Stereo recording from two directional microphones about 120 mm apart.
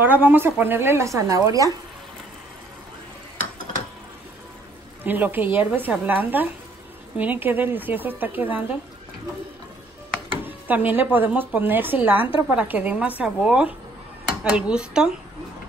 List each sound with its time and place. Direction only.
0.0 s a woman's voice: 15° right (ahead or behind)
5.0 s speech: 15° right (ahead or behind)
10.4 s speech: 15° right (ahead or behind)